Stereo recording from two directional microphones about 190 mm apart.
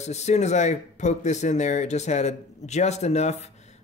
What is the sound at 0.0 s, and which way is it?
Speech, 35° left (ahead or behind).